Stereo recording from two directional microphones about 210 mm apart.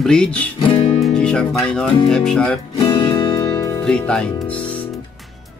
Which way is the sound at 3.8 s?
5° left (ahead or behind).